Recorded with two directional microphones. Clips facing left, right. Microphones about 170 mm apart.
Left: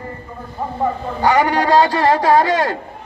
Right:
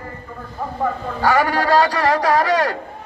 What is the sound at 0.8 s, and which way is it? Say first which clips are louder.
A man's voice: left 2 dB; 20° left (ahead or behind).